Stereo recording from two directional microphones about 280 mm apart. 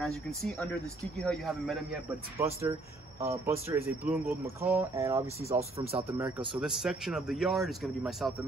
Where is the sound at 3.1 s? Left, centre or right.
Centre.